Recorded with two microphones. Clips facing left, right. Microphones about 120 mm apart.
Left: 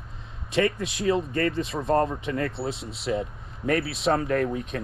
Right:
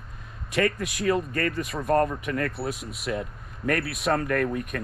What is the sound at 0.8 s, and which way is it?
Speech, 25° left (ahead or behind).